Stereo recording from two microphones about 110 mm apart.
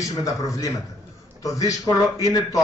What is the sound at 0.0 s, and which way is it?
A man's voice, 30° left (ahead or behind).